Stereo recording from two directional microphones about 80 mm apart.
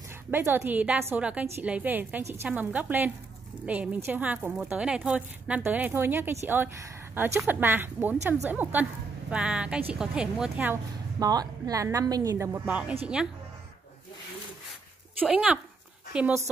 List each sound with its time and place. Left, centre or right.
0.3 s a woman's voice: right
2.2 s a woman's voice: right
2.5 s a woman's voice: right
9.3 s speech: centre
10.5 s a woman's voice: right
11.1 s a woman's voice: right
12.6 s speech: centre
15.2 s a woman's voice: centre